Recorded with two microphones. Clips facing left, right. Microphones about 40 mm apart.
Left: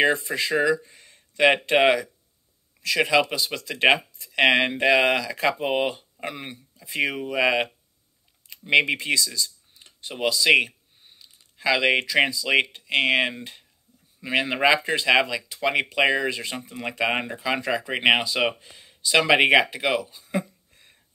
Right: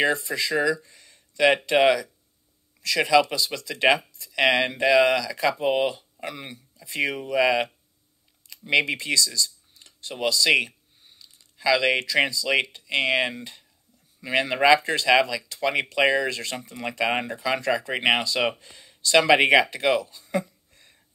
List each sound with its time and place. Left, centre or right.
0.0 s speech: left; by 7.4 s centre
7.4 s speech: left
20.3 s a sound: left